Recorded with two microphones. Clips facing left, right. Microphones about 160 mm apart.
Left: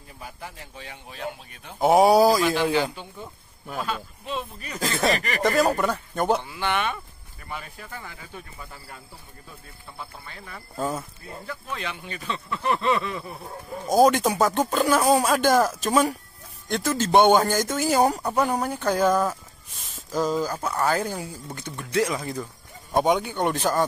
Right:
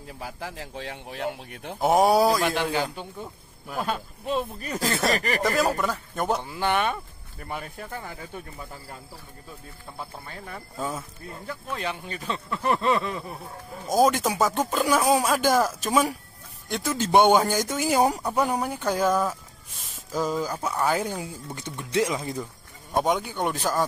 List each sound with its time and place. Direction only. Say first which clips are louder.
0.2 s speech: right 3 dB; 90° right; by 1.8 s 70° right (ahead or behind)
1.8 s speech: left 3 dB; centre (ahead or behind)
3.8 s speech: right 3 dB; 45° right (ahead or behind)
4.7 s speech: left 1 dB; 5° right (ahead or behind)
5.1 s speech: right 1 dB; 35° right (ahead or behind)
5.4 s speech: left 6 dB; centre (ahead or behind)
6.5 s speech: right 2 dB; 40° right (ahead or behind)
10.2 s speech: right 3 dB; 40° right (ahead or behind)
10.8 s speech: left 4 dB; centre (ahead or behind)
11.4 s speech: right 2 dB; 35° right (ahead or behind)
13.8 s speech: left 3 dB; centre (ahead or behind); by 22.4 s 20° right (ahead or behind)
22.9 s speech: left 3 dB; centre (ahead or behind)